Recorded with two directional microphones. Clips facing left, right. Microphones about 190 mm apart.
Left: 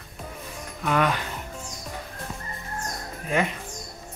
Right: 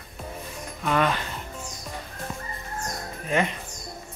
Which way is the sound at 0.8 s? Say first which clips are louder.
Even; 10° left (ahead or behind).